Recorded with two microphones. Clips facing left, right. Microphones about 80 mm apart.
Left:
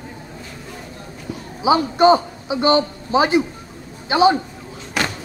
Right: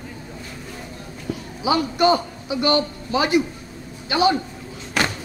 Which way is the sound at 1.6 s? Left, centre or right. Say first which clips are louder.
Left 5 dB; left.